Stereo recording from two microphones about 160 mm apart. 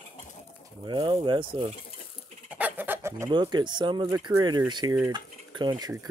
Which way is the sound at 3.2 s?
30° right (ahead or behind).